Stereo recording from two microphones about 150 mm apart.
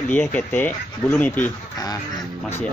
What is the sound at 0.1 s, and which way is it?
A man's voice, 10° left (ahead or behind).